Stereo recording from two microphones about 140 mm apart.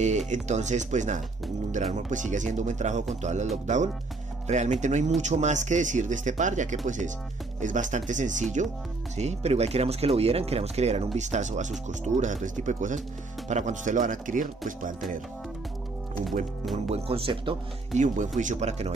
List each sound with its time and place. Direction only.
0.3 s speech: 55° right (ahead or behind)
16.7 s speech: 45° right (ahead or behind)
17.9 s speech: 65° right (ahead or behind)